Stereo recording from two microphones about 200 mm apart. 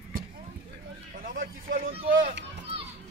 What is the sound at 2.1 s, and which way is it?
Speech, 40° right (ahead or behind).